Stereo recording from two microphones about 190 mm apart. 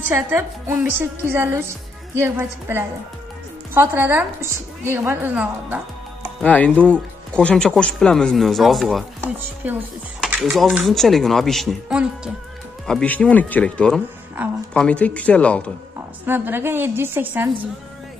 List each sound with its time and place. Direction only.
0.1 s a woman's voice: 15° right (ahead or behind)
6.4 s speech: 5° left (ahead or behind)
16.3 s a woman's voice: 10° right (ahead or behind)